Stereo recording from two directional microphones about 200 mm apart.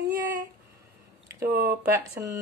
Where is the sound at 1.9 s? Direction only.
15° right (ahead or behind).